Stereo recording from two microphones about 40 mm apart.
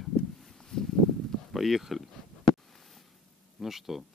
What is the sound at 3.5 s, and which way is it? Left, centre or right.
Speech, centre.